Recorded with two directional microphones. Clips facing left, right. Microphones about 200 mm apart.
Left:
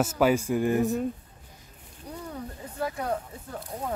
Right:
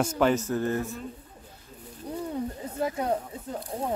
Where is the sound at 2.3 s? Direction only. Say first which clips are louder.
Right 6 dB; 20° right (ahead or behind).